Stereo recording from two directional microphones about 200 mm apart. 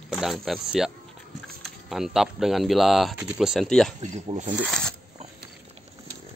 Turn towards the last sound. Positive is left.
turn(degrees=5)  # may be behind; listen again after turning